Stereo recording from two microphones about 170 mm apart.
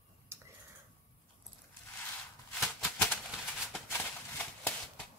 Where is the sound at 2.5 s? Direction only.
Centre (ahead or behind).